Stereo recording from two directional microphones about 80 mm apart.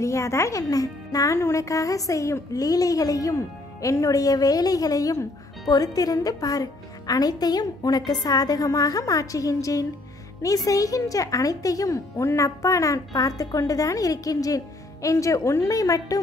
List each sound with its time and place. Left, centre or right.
0.0 s speech: left